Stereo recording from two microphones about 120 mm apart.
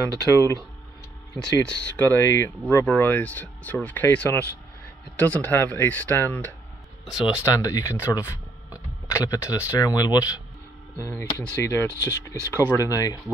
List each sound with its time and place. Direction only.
0.3 s speech: 25° left (ahead or behind)
1.4 s speech: 10° left (ahead or behind)
7.1 s speech: 5° right (ahead or behind)
7.4 s speech: 25° left (ahead or behind)